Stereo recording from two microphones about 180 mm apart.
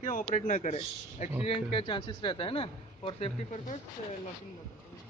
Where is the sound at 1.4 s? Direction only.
30° left (ahead or behind).